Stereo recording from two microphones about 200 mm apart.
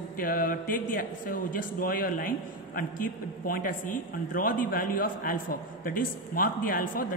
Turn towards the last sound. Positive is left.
turn(degrees=45)  # may be behind; listen again after turning